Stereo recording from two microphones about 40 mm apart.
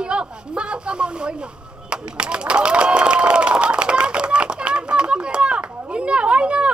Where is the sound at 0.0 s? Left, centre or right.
Right.